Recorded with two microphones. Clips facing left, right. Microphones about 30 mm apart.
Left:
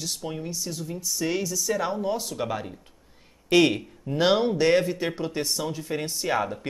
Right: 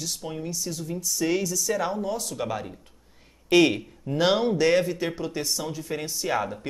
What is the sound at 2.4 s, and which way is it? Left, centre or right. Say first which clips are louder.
Speech: even; centre.